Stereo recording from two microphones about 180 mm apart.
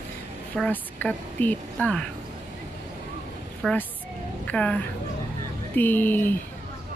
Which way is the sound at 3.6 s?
Centre (ahead or behind).